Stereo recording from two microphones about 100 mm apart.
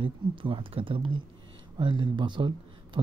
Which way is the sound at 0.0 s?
60° right (ahead or behind).